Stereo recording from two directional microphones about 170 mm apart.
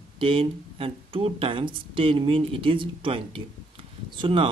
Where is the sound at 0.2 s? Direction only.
35° right (ahead or behind).